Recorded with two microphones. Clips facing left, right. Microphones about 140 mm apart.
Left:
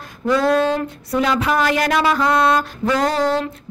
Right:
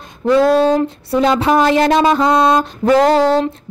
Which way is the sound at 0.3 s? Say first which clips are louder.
Right 5 dB; 30° right (ahead or behind).